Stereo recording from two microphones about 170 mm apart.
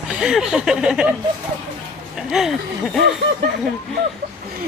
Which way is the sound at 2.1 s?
Centre (ahead or behind).